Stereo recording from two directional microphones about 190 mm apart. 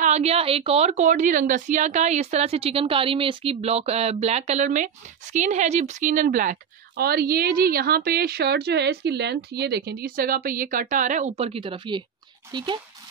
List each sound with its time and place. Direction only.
0.0 s a woman's voice: 35° right (ahead or behind)